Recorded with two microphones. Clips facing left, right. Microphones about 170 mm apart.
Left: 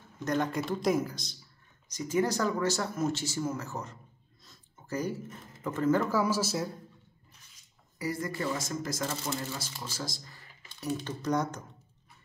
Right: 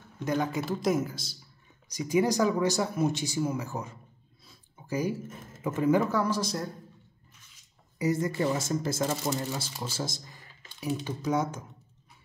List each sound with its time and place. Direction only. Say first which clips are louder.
0.2 s a man's voice: right 1 dB; 5° right (ahead or behind)
6.0 s a man's voice: even; 5° left (ahead or behind)
8.0 s speech: right 6 dB; 20° right (ahead or behind)
9.6 s speech: right 4 dB; 30° right (ahead or behind)
10.8 s speech: right 2 dB; 10° right (ahead or behind)